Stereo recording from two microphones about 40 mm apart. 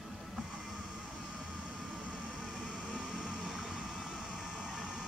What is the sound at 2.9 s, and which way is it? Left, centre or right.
Vehicle, centre.